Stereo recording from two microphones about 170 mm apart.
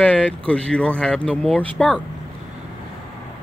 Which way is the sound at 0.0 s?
10° left (ahead or behind).